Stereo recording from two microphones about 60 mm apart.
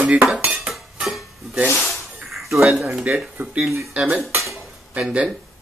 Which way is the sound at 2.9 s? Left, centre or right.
Centre.